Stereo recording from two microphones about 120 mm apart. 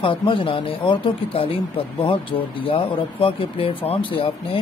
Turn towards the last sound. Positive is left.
turn(degrees=45)  # may be behind; listen again after turning